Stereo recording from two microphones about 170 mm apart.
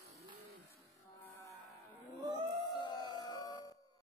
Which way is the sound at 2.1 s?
25° right (ahead or behind).